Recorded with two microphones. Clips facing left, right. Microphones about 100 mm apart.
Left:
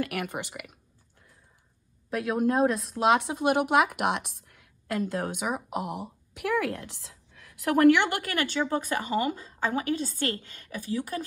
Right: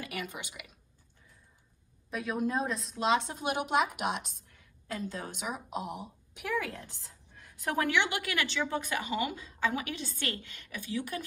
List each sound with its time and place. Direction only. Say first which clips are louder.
0.0 s speech: left 8 dB; 60° left (ahead or behind)
2.0 s speech: left 6 dB; 65° left (ahead or behind); by 11.2 s 40° left (ahead or behind)